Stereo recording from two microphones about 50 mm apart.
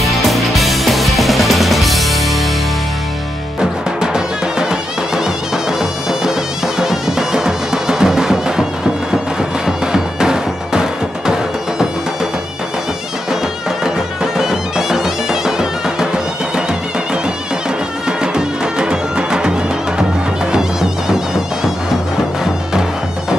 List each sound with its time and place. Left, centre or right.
0.0 s music: centre
4.0 s music: centre
9.7 s music: centre
13.8 s bagpipes: centre
15.4 s music: centre
18.0 s music: centre
20.5 s music: centre